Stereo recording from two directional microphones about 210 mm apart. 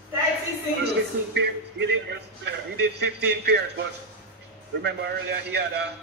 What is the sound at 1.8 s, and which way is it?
A man's voice, 55° right (ahead or behind).